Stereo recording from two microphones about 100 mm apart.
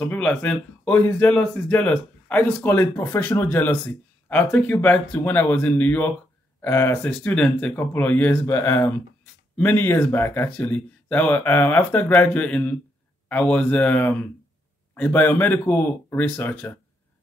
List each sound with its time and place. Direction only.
0.2 s speech: 10° left (ahead or behind)